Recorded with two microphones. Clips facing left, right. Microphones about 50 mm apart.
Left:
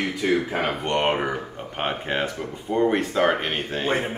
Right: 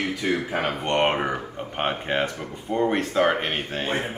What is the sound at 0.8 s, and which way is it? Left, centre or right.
Speech, centre.